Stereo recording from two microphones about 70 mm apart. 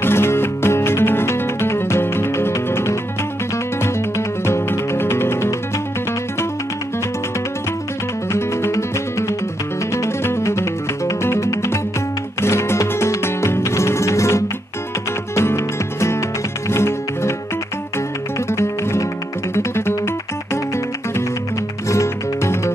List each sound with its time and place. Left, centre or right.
0.0 s music: left
4.5 s music: left
8.3 s music: left
10.0 s music: left
18.5 s music: left
21.8 s music: left